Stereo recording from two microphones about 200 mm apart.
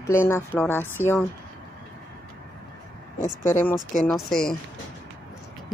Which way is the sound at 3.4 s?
10° left (ahead or behind).